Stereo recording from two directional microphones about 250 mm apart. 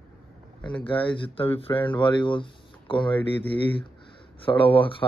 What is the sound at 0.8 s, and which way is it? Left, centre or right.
Speech, left.